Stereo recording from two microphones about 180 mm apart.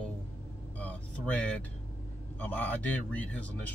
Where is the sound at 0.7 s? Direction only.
10° left (ahead or behind).